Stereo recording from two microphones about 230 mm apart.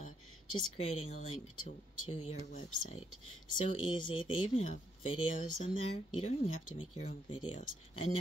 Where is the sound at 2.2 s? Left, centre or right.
Left.